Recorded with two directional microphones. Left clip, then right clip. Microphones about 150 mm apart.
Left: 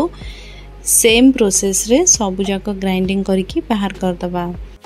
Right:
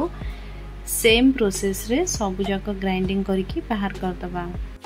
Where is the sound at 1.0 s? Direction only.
45° left (ahead or behind).